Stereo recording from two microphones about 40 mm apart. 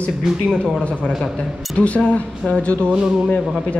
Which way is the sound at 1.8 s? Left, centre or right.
Left.